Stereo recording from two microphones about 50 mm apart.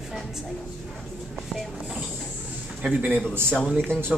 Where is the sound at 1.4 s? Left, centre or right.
Centre.